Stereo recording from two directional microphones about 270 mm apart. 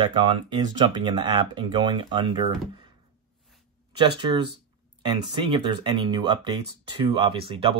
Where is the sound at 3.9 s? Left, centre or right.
Centre.